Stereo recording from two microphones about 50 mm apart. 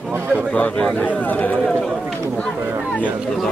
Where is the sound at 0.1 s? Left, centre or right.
Right.